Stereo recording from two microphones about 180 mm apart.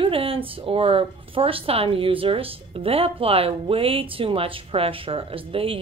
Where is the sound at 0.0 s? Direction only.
30° right (ahead or behind).